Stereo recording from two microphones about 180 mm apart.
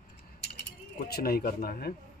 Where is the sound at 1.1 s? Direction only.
60° left (ahead or behind).